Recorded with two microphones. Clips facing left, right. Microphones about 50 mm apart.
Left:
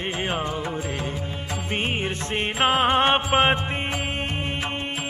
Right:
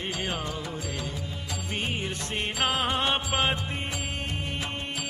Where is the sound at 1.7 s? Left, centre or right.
Left.